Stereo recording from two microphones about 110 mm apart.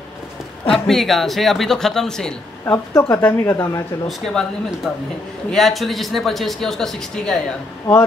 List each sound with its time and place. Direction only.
0.7 s speech: centre (ahead or behind)
2.6 s speech: 25° left (ahead or behind)
3.5 s speech: 35° left (ahead or behind)
4.2 s speech: 5° left (ahead or behind)